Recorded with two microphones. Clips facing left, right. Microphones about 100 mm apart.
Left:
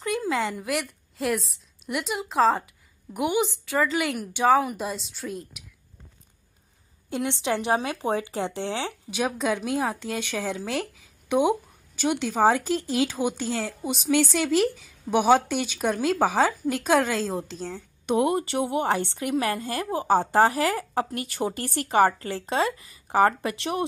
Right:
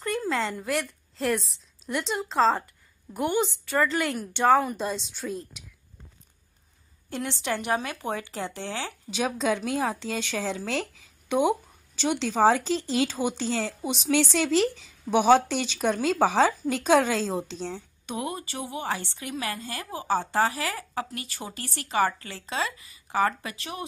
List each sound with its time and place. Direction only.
0.0 s a woman's voice: 15° left (ahead or behind)
7.1 s speech: 15° left (ahead or behind)
9.1 s a woman's voice: 5° left (ahead or behind)
18.0 s speech: 60° left (ahead or behind)